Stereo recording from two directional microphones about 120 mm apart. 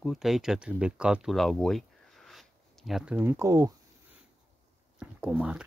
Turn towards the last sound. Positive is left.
turn(degrees=-10)  # may be behind; listen again after turning